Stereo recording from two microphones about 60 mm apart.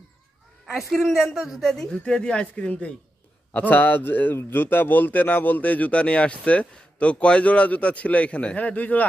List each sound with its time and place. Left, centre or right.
0.7 s speech: centre
1.6 s a woman's voice: centre; by 9.0 s left